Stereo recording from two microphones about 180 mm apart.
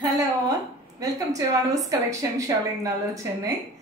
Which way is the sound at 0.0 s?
20° right (ahead or behind).